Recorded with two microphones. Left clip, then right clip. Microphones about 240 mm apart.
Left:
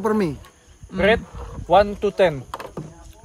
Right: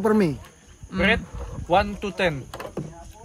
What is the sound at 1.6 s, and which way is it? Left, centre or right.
Speech, left.